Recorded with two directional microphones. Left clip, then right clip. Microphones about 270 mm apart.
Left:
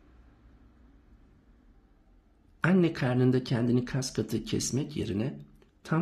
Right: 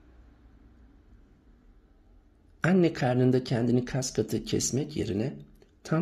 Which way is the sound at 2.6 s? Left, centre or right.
Centre.